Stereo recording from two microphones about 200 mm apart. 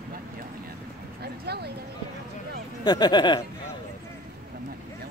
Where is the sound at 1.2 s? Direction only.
55° right (ahead or behind).